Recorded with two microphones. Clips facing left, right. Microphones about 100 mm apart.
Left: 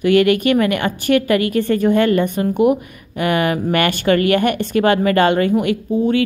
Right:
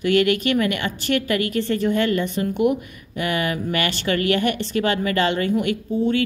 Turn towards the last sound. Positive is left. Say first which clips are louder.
# left 4 dB
turn(degrees=45)  # may be behind; listen again after turning